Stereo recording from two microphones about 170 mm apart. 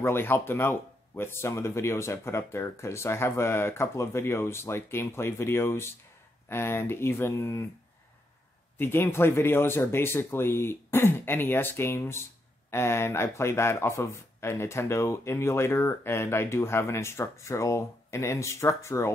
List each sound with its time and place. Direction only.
0.0 s speech: 15° left (ahead or behind)
8.7 s speech: 15° left (ahead or behind)